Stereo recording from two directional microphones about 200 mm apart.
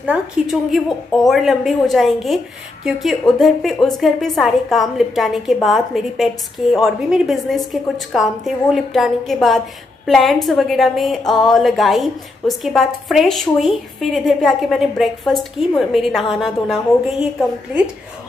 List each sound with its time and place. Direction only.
0.0 s a woman's voice: 5° right (ahead or behind)